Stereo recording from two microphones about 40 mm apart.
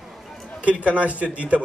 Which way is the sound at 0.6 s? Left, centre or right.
Right.